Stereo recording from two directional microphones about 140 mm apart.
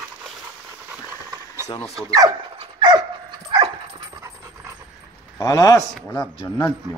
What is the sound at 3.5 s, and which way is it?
Dog, 30° right (ahead or behind).